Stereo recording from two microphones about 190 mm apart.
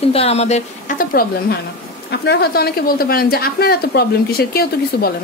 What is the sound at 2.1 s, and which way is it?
A woman's voice, 55° left (ahead or behind).